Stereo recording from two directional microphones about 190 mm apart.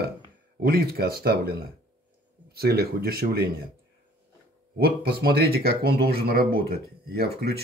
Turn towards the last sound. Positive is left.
turn(degrees=-55)  # may be behind; listen again after turning